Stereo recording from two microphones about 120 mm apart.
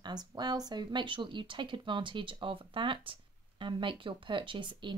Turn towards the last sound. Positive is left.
turn(degrees=-40)  # may be behind; listen again after turning